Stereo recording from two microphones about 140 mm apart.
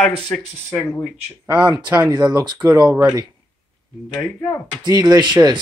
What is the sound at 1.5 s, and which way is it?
Speech, 10° right (ahead or behind).